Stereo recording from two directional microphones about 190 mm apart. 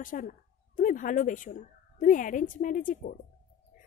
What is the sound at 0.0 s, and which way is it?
Speech, 45° left (ahead or behind).